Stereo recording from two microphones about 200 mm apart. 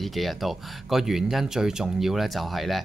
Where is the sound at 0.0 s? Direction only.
Centre (ahead or behind).